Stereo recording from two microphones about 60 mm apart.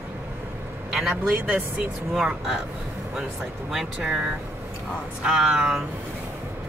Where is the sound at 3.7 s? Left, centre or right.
Centre.